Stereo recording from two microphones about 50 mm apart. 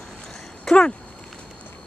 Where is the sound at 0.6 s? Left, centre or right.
Centre.